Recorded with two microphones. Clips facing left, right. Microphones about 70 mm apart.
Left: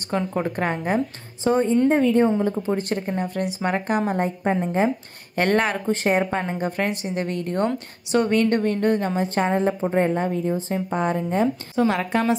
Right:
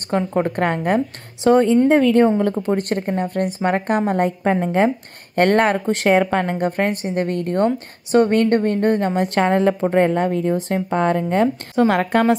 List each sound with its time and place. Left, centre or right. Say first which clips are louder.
0.1 s a woman's voice: right 5 dB; right
2.3 s a woman's voice: right 4 dB; right
4.1 s a woman's voice: right 4 dB; right
5.3 s a woman's voice: right 5 dB; right
5.9 s a woman's voice: right 6 dB; right
6.8 s a woman's voice: right 4 dB; right
9.1 s a woman's voice: right 4 dB; right
11.8 s a woman's voice: right 5 dB; right